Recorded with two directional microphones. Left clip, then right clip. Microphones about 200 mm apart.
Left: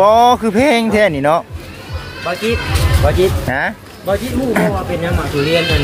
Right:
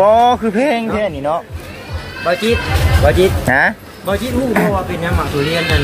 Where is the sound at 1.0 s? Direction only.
30° left (ahead or behind).